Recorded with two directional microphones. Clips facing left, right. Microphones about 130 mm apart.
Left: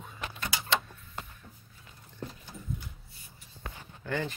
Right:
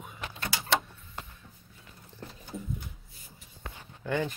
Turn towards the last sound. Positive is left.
turn(degrees=-10)  # may be behind; listen again after turning